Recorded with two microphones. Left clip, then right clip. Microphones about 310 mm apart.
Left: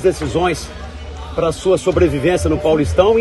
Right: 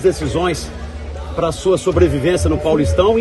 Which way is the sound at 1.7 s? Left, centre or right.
Centre.